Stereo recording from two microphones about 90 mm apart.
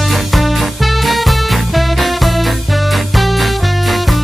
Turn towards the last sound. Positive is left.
turn(degrees=0)  # may be behind; listen again after turning